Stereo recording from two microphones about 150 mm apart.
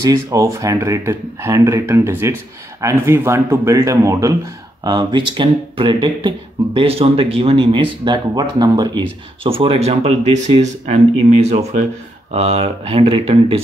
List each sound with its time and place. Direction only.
0.0 s speech: 20° right (ahead or behind)